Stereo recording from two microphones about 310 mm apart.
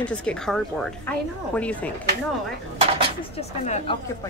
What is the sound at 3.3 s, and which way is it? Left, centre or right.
Speech, centre.